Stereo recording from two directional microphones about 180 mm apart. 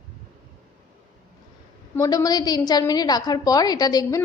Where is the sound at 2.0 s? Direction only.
20° left (ahead or behind).